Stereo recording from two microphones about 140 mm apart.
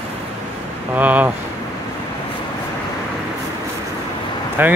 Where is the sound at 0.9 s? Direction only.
10° right (ahead or behind).